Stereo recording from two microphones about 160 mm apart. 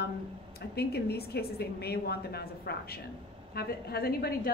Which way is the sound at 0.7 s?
85° left.